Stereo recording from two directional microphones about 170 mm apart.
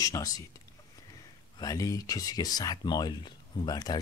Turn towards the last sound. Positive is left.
turn(degrees=20)  # may be behind; listen again after turning